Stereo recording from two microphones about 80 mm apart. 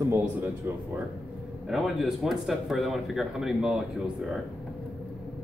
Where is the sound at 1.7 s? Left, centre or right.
Centre.